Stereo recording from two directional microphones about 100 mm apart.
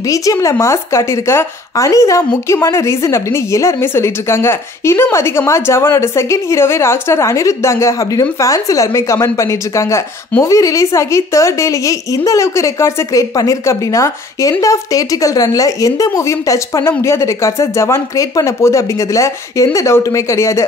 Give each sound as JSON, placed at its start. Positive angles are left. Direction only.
{"t": 0.1, "sound": "a woman's voice", "side_deg": 35}